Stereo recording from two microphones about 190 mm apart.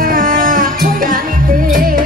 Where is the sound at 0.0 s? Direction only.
45° right (ahead or behind).